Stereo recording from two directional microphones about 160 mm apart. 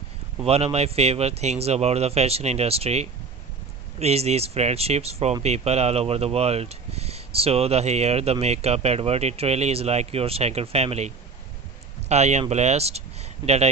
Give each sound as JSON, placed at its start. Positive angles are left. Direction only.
{"t": 0.5, "sound": "speech", "side_deg": -40}